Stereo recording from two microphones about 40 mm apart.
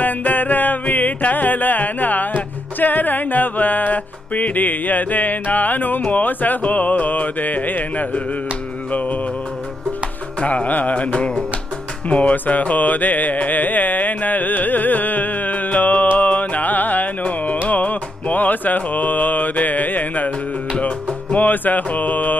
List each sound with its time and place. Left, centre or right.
0.0 s music: left
10.4 s music: left